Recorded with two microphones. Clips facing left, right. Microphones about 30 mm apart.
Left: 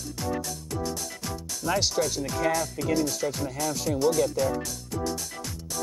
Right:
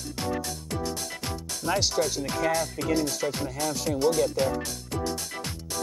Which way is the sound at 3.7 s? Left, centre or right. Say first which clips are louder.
Even; centre.